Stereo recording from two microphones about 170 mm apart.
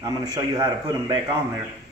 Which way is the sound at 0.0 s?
20° right (ahead or behind).